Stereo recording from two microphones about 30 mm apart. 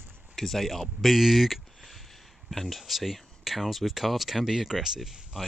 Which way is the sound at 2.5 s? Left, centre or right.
Centre.